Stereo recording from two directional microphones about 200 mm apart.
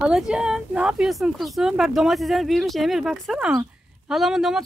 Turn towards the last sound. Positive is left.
turn(degrees=0)  # may be behind; listen again after turning